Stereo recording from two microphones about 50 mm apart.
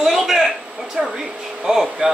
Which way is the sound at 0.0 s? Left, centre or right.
Centre.